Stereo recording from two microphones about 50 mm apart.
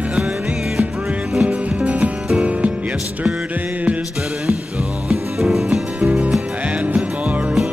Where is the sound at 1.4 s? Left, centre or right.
Right.